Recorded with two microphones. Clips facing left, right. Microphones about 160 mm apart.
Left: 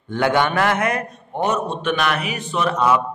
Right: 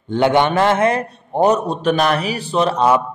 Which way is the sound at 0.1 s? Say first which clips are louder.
Right 4 dB; 20° right (ahead or behind).